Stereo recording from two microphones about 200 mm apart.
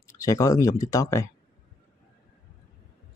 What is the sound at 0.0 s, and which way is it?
Speech, 15° left (ahead or behind).